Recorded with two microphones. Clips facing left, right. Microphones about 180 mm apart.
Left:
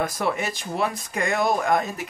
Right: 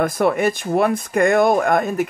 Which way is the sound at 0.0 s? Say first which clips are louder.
Right 8 dB; 55° right (ahead or behind).